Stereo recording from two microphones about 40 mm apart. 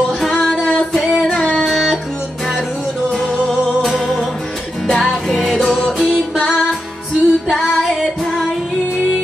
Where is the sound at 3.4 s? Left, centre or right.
Centre.